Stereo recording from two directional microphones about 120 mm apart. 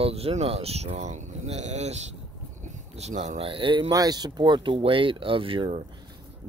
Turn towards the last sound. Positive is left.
turn(degrees=-50)  # may be behind; listen again after turning